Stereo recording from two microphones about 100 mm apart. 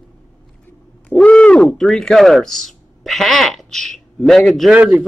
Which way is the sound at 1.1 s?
10° left (ahead or behind).